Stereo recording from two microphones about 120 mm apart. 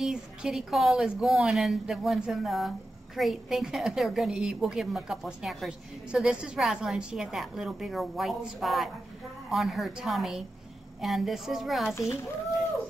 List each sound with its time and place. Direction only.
0.0 s a woman's voice: 5° right (ahead or behind)
11.9 s a child's voice: 25° left (ahead or behind)